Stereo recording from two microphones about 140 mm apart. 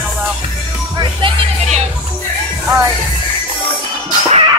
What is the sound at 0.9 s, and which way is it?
Speech, 35° right (ahead or behind).